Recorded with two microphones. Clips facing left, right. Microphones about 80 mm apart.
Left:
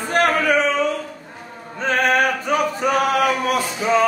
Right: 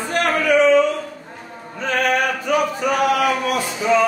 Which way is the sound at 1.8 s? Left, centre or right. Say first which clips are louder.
Left 1 dB; left.